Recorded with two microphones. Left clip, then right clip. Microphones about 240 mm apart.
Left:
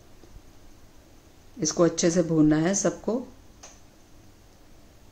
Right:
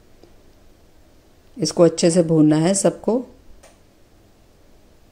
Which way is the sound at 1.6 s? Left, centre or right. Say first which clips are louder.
Right 7 dB; right.